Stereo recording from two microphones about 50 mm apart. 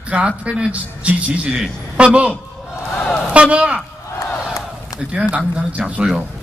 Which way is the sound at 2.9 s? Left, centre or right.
Centre.